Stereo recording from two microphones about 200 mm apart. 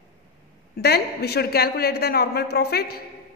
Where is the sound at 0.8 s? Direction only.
55° left (ahead or behind).